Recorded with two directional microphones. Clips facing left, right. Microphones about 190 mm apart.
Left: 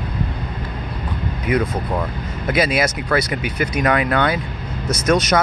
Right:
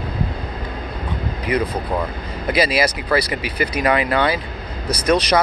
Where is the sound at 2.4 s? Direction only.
Centre (ahead or behind).